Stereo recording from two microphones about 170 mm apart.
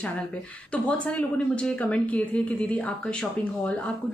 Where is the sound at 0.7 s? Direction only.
5° left (ahead or behind).